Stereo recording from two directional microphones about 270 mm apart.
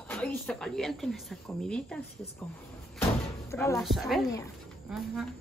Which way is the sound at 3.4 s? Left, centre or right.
Centre.